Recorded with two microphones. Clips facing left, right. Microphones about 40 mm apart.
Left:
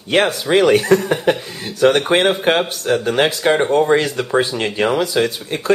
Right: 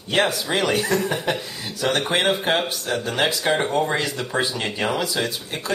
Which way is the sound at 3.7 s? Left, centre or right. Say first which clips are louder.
Left 8 dB; left.